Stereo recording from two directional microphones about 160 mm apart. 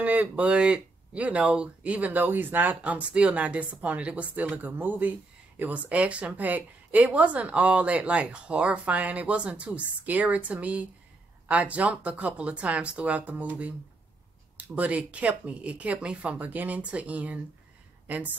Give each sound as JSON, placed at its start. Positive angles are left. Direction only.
{"t": 0.0, "sound": "a woman's voice", "side_deg": -10}